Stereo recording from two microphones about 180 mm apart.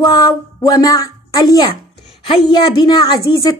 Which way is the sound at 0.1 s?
20° left (ahead or behind).